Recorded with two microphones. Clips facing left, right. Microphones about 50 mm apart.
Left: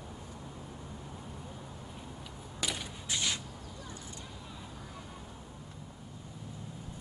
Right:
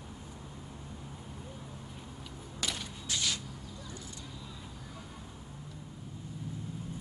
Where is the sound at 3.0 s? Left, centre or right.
Left.